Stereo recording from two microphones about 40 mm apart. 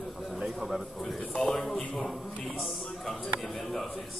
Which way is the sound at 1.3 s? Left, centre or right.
Centre.